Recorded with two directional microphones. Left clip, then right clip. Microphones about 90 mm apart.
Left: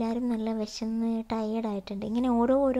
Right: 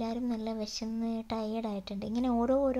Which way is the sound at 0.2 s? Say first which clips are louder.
Left 4 dB; 35° left (ahead or behind).